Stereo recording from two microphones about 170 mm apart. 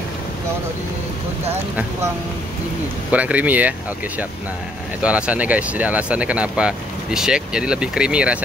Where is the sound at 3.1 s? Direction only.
10° right (ahead or behind).